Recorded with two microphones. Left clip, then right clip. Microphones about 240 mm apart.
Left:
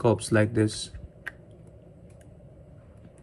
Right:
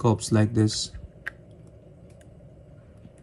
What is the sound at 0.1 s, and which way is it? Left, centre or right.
Speech, centre.